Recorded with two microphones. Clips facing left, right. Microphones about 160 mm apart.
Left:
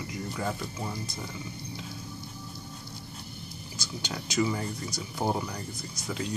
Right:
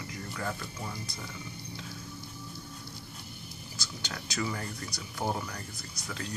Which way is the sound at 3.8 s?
20° left (ahead or behind).